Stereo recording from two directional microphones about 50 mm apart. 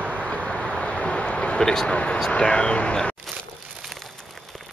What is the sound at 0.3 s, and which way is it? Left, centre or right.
Vehicle, left.